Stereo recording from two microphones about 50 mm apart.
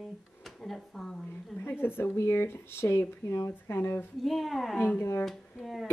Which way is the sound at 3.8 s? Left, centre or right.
Left.